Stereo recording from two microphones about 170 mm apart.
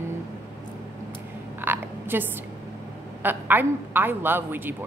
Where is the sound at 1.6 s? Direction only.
10° right (ahead or behind).